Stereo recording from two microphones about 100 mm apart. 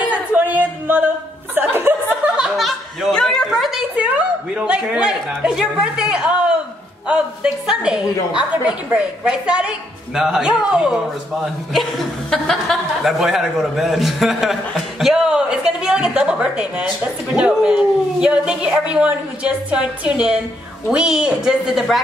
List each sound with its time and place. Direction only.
0.0 s a sound: 15° right (ahead or behind)
1.5 s chuckle: 20° right (ahead or behind)
2.2 s chuckle: 10° right (ahead or behind)
4.6 s a woman's voice: 10° right (ahead or behind)